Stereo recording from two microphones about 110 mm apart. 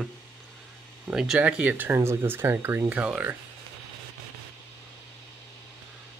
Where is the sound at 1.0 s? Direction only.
5° right (ahead or behind).